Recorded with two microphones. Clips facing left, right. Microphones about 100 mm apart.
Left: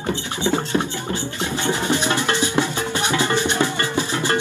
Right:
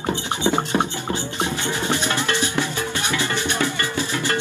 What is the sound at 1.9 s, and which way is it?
Music, 20° left (ahead or behind).